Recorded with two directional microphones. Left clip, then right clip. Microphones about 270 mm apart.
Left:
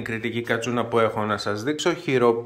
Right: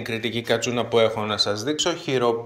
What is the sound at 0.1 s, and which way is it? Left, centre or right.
Speech, centre.